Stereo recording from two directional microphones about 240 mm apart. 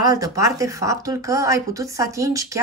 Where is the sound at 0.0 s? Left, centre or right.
Centre.